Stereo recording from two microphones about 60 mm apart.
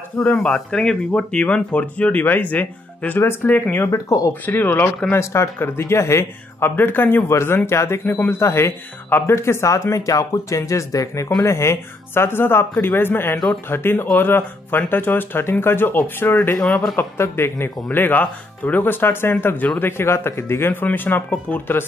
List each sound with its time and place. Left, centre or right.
0.2 s speech: centre; by 3.6 s left
3.9 s speech: left
4.5 s speech: left
5.1 s speech: left
7.2 s speech: left
11.4 s speech: left
17.2 s speech: left
17.9 s speech: left
19.8 s speech: left
20.8 s speech: left